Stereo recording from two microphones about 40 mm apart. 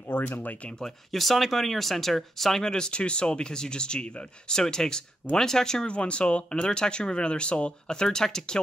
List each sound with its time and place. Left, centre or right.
0.1 s speech: left
0.7 s speech: centre
2.6 s speech: centre
5.9 s speech: left
7.9 s speech: centre